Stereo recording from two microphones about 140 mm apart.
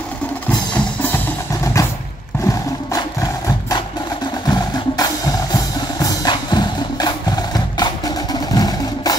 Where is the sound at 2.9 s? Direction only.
25° left (ahead or behind).